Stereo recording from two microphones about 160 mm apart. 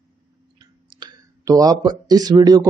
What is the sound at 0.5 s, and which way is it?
Clicking, 25° right (ahead or behind).